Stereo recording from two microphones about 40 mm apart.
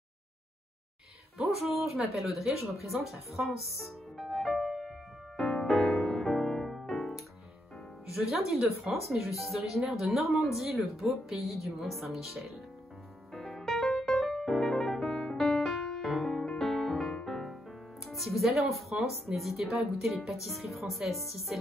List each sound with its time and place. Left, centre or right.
2.1 s speech: centre
5.4 s music: centre
8.1 s speech: centre
13.3 s music: centre
18.0 s speech: centre